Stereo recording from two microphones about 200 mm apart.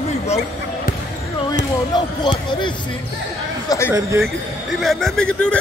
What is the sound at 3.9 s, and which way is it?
Speech, 10° right (ahead or behind).